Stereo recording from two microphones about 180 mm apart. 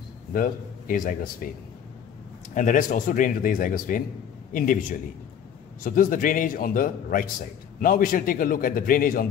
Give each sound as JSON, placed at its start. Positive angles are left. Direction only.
{"t": 0.3, "sound": "speech", "side_deg": 50}
{"t": 2.5, "sound": "a man's voice", "side_deg": 45}
{"t": 5.9, "sound": "speech", "side_deg": 50}